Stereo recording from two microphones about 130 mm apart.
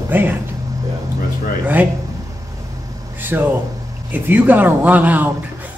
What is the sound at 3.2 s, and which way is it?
Speech, 15° right (ahead or behind).